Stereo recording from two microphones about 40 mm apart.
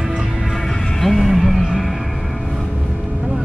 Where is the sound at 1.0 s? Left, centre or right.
Centre.